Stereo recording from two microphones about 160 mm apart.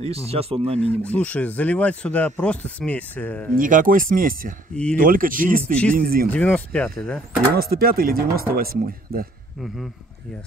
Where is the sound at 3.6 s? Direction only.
55° right (ahead or behind).